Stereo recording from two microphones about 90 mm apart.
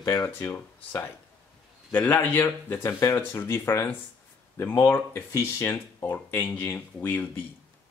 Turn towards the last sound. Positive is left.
turn(degrees=20)  # may be behind; listen again after turning